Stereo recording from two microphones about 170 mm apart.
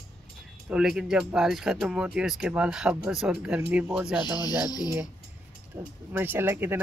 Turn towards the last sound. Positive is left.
turn(degrees=-10)  # may be behind; listen again after turning